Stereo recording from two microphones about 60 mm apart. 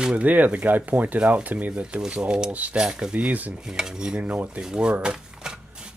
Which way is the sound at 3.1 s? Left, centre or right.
Right.